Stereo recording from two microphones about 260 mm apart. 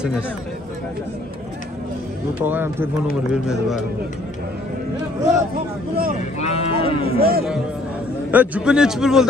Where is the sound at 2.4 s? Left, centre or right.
Centre.